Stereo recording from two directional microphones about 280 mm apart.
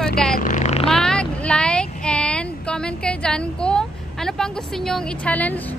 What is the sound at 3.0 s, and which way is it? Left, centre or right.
Speech, centre.